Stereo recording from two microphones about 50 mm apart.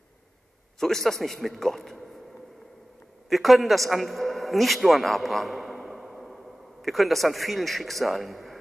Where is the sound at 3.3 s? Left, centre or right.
Centre.